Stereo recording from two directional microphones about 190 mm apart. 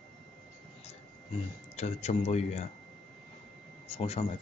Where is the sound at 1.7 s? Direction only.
35° left (ahead or behind).